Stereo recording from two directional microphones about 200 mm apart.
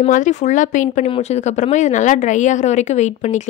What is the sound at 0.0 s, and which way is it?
Speech, 35° left (ahead or behind).